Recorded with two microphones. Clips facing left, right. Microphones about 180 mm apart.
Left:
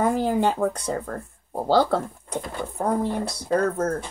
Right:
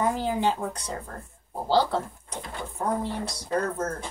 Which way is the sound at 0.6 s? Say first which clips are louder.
Left 8 dB; 60° left (ahead or behind).